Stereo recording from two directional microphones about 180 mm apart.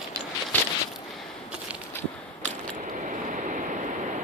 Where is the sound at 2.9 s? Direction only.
45° right (ahead or behind).